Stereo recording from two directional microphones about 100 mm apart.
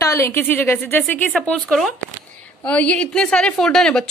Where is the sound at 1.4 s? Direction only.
5° left (ahead or behind).